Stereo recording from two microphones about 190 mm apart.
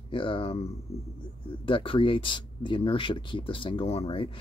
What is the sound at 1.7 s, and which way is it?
Speech, 25° left (ahead or behind).